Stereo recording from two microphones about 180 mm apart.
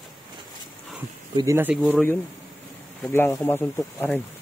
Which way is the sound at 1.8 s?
10° left (ahead or behind).